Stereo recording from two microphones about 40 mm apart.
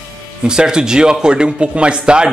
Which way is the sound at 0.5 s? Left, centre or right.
Centre.